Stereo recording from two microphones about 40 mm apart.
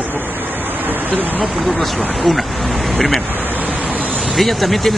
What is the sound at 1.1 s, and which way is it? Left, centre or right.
Speech, right.